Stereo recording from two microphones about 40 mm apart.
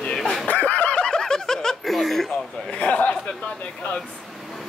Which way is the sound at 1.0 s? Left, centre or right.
Centre.